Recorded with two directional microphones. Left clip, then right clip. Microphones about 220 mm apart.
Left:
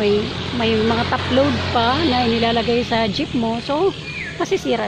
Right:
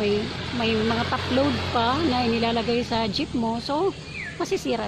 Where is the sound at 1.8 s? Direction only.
5° right (ahead or behind).